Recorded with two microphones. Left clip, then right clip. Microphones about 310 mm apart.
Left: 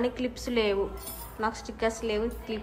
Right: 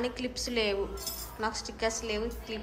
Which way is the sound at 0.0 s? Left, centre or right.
Centre.